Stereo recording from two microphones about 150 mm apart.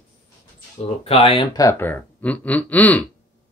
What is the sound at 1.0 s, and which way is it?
Speech, 40° left (ahead or behind).